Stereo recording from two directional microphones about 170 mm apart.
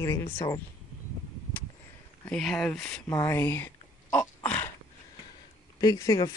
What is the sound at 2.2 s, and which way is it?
Speech, centre (ahead or behind).